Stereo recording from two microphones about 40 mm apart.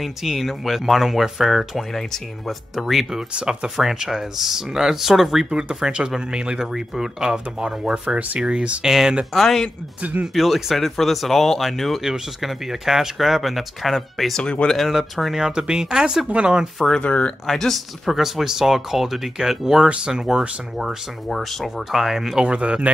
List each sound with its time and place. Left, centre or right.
0.0 s speech: centre
5.5 s speech: centre
6.6 s speech: centre
9.3 s speech: centre
12.0 s speech: centre
14.3 s speech: left
14.7 s speech: centre
15.3 s speech: centre
17.0 s speech: left
17.5 s speech: centre
18.1 s speech: centre
21.3 s speech: centre
22.4 s speech: right